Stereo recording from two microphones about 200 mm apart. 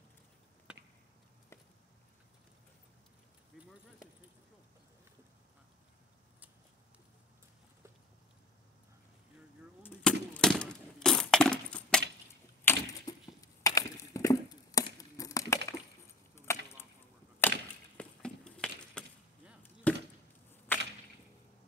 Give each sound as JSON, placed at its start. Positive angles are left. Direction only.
{"t": 0.7, "sound": "chop", "side_deg": -5}
{"t": 3.5, "sound": "a sound", "side_deg": 0}
{"t": 9.8, "sound": "breaking", "side_deg": 5}
{"t": 12.6, "sound": "a sound", "side_deg": 15}
{"t": 15.0, "sound": "crumpling", "side_deg": 20}
{"t": 16.5, "sound": "chop", "side_deg": 15}
{"t": 20.7, "sound": "arrow", "side_deg": 10}